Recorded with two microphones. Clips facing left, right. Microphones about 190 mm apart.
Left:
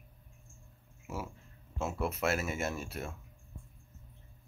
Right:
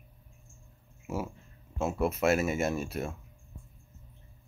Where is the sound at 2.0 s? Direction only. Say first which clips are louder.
Right 7 dB; 15° right (ahead or behind).